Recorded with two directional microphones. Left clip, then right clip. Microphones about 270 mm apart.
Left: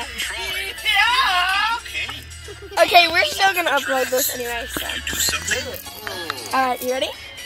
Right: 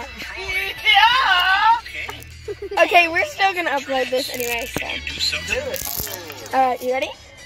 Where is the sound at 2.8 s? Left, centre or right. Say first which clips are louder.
Left 1 dB; centre.